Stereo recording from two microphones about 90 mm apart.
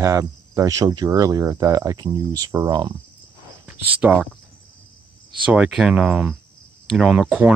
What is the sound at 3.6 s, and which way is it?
Speech, 15° right (ahead or behind).